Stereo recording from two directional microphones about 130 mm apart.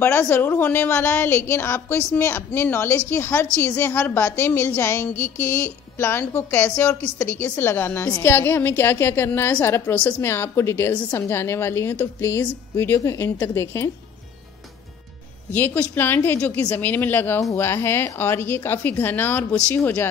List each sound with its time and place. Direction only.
0.0 s a woman's voice: 15° left (ahead or behind)
15.5 s a woman's voice: 15° left (ahead or behind)